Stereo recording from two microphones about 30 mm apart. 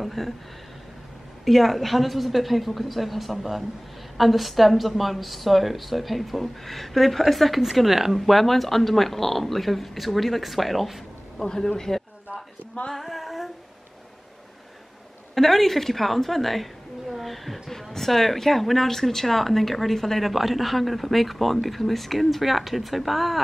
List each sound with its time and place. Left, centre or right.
0.0 s speech: centre
1.4 s speech: centre
11.3 s speech: centre
12.9 s speech: centre
15.3 s speech: centre